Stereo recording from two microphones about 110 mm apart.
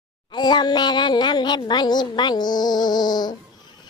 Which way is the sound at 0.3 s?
40° left (ahead or behind).